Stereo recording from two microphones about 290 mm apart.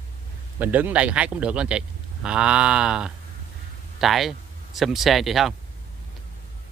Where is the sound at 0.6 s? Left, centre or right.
Centre.